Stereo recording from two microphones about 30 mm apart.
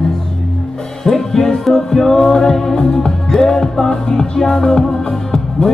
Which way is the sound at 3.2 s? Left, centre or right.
Centre.